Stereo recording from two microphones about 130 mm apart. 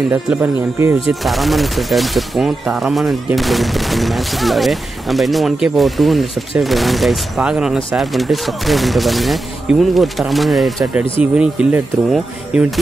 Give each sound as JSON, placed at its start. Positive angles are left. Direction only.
{"t": 0.1, "sound": "speech", "side_deg": -15}
{"t": 1.2, "sound": "speech", "side_deg": 0}